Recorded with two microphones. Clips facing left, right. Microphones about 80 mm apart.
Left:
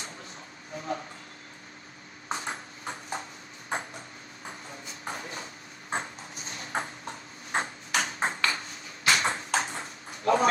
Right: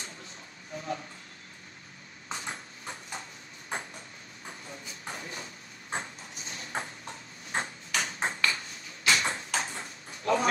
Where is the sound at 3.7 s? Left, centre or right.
Left.